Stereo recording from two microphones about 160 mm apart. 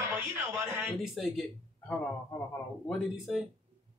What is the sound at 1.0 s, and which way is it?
Speech, centre (ahead or behind).